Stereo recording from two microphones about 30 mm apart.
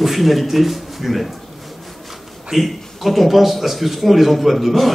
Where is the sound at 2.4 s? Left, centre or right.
Centre.